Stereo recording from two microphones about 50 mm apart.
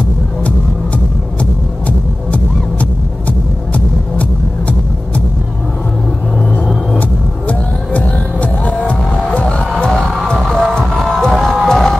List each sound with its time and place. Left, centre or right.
1.4 s music: left
7.0 s music: left; by 11.8 s centre